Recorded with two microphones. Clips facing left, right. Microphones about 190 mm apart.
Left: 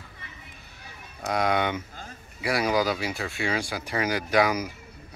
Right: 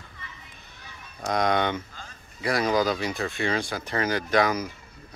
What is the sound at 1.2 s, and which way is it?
Speech, 5° left (ahead or behind).